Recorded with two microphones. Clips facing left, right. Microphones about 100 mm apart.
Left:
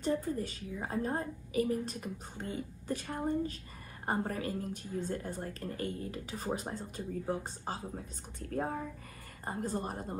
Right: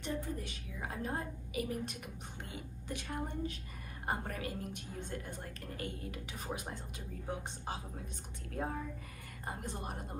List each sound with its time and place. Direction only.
0.2 s a woman's voice: 40° left (ahead or behind)